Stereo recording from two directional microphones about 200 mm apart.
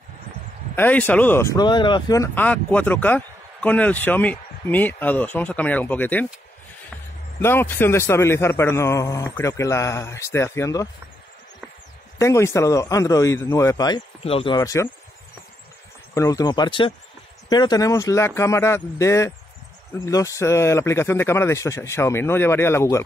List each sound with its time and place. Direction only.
0.7 s speech: 10° left (ahead or behind)
7.4 s speech: 10° left (ahead or behind)
12.2 s speech: 15° left (ahead or behind)
16.2 s speech: 15° left (ahead or behind)